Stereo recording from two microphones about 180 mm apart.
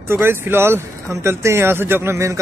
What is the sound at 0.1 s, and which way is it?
Speech, 15° right (ahead or behind).